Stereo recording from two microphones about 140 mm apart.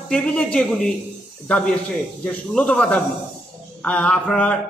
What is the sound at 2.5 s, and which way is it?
A man's voice, 10° left (ahead or behind).